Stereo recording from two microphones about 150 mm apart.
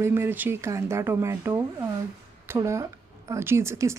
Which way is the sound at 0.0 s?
15° right (ahead or behind).